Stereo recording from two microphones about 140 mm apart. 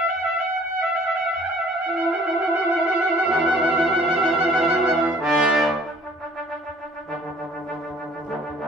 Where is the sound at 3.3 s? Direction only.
10° right (ahead or behind).